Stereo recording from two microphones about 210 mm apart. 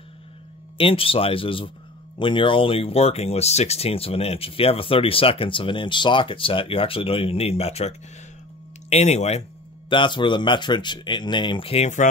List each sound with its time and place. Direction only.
0.7 s speech: 25° left (ahead or behind)
8.9 s speech: 30° left (ahead or behind)